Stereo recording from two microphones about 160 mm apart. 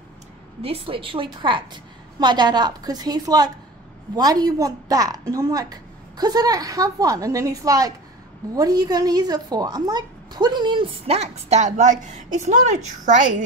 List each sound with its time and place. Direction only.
0.6 s a woman's voice: 35° right (ahead or behind); by 13.4 s 55° right (ahead or behind)